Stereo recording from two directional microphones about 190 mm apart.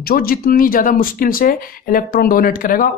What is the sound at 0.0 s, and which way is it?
Speech, 50° left (ahead or behind).